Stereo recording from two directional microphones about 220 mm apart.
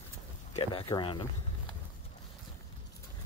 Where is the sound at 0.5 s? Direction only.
15° left (ahead or behind).